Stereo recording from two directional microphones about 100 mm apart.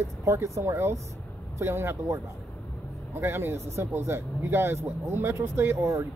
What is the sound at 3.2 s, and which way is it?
Speech, 25° right (ahead or behind).